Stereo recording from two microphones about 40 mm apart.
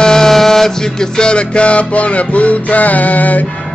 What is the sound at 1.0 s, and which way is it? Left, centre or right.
Music, left.